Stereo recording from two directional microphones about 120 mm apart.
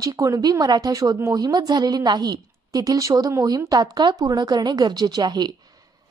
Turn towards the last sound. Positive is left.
turn(degrees=-35)  # may be behind; listen again after turning